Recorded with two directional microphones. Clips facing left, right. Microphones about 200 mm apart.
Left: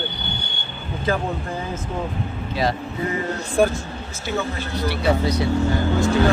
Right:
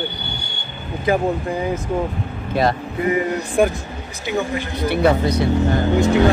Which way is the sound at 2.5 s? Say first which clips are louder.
Right 5 dB; 55° right (ahead or behind).